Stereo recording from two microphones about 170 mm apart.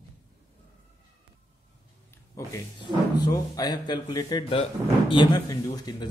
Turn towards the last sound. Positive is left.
turn(degrees=20)  # may be behind; listen again after turning